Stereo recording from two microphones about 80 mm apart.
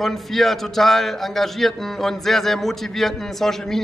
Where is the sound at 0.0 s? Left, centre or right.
Centre.